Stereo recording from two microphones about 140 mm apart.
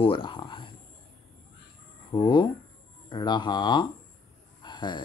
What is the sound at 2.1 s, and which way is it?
Speech, 35° left (ahead or behind).